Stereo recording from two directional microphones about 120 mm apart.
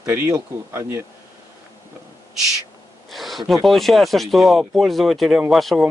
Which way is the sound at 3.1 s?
Centre (ahead or behind).